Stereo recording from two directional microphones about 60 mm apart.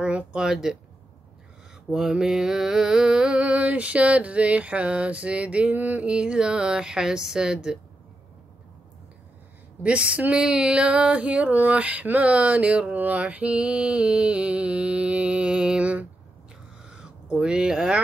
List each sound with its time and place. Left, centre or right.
0.0 s mantra: centre
1.9 s mantra: centre
9.8 s a sound: right